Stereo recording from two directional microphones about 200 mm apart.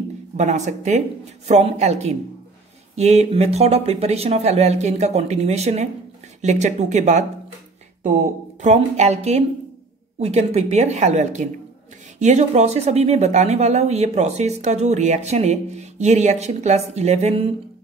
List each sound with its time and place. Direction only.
0.4 s speech: 35° right (ahead or behind)